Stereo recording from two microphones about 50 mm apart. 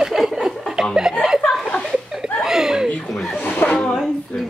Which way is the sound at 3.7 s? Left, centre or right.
Centre.